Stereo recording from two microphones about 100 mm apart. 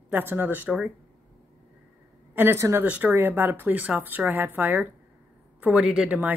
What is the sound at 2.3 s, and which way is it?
Speech, 25° right (ahead or behind).